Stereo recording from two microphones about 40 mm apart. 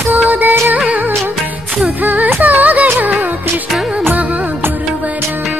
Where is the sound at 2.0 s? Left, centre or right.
Right.